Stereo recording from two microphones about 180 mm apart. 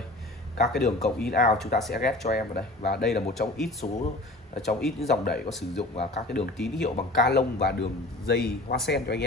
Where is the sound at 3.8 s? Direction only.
40° left (ahead or behind).